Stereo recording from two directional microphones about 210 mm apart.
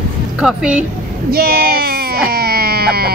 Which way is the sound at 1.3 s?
45° right (ahead or behind).